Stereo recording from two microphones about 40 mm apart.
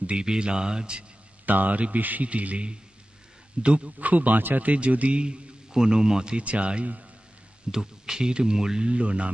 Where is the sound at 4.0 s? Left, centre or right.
Right.